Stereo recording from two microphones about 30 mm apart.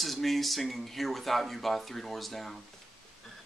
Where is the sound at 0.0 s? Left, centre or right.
Centre.